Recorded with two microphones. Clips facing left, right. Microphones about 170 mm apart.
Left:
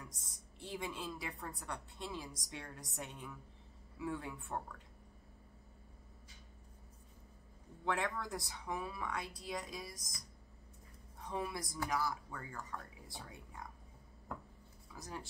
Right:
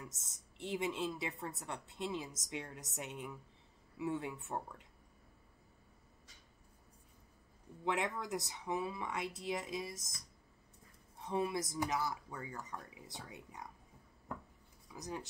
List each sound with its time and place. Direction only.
0.0 s a woman's voice: 25° right (ahead or behind)
7.8 s a woman's voice: 20° right (ahead or behind)
11.2 s a woman's voice: 20° right (ahead or behind)
14.9 s speech: 15° right (ahead or behind)